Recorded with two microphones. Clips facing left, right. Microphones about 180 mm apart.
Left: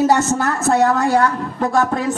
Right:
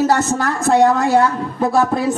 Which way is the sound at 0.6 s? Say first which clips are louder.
Right 3 dB; centre (ahead or behind).